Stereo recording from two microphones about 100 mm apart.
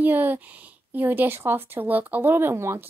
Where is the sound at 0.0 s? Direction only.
20° right (ahead or behind).